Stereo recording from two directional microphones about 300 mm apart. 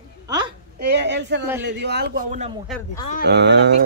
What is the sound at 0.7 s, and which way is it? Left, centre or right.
A man's voice, right.